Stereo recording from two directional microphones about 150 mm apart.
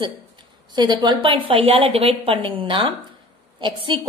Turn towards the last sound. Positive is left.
turn(degrees=-35)  # may be behind; listen again after turning